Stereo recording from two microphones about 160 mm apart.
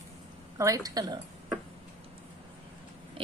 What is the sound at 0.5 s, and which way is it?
Speech, 20° right (ahead or behind).